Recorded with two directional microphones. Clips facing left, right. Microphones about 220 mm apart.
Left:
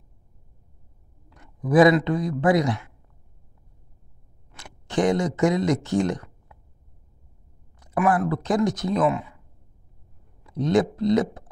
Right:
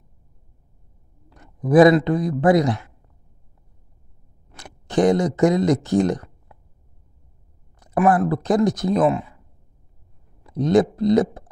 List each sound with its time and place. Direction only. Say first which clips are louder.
1.3 s speech: right 4 dB; 35° right (ahead or behind)
4.5 s speech: right 3 dB; 35° right (ahead or behind)
7.8 s speech: right 4 dB; 35° right (ahead or behind)
10.4 s speech: right 4 dB; 35° right (ahead or behind)